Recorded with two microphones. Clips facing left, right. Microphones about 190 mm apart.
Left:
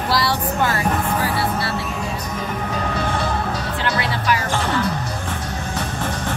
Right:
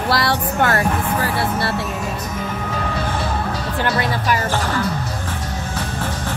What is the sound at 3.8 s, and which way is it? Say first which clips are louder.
Music: right 2 dB; 45° right (ahead or behind).